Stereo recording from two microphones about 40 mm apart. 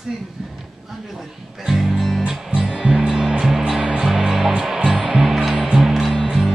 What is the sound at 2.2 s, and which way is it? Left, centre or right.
Music, right.